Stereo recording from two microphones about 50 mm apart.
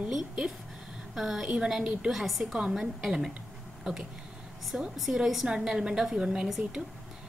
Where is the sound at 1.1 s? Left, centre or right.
Centre.